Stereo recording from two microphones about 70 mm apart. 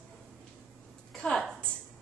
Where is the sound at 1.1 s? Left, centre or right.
Centre.